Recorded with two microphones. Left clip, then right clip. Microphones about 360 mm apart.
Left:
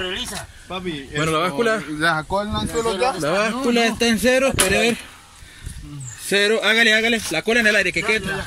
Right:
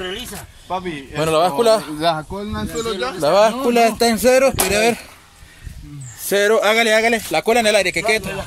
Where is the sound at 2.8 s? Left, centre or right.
Centre.